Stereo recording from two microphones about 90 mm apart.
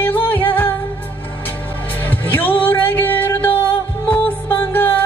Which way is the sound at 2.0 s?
20° left (ahead or behind).